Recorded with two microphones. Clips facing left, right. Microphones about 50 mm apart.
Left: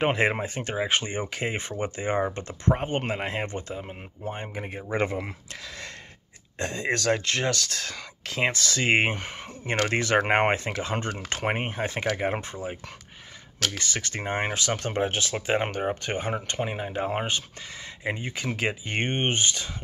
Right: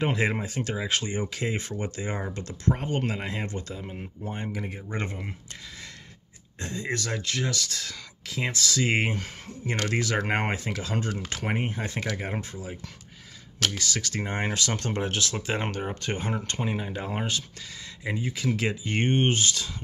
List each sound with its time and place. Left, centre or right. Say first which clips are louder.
0.0 s speech: left 3 dB; left
3.7 s speech: left 1 dB; left
6.6 s speech: left 4 dB; left
7.1 s speech: left 5 dB; left
13.7 s speech: right 1 dB; left
18.0 s speech: right 1 dB; left